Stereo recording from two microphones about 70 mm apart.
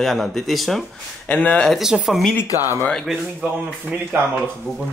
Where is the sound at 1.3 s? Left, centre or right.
Centre.